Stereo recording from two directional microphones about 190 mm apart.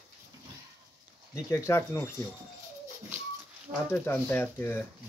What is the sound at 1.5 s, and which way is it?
Speech, 15° left (ahead or behind).